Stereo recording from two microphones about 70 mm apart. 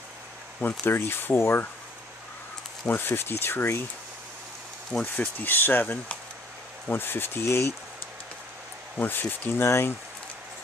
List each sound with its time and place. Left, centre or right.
0.6 s speech: left
2.9 s speech: left
5.4 s speech: left
8.9 s speech: left